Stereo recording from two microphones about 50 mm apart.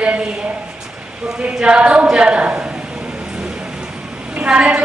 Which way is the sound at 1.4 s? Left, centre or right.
Right.